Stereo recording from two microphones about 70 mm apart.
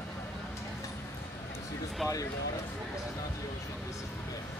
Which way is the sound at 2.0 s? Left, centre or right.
Centre.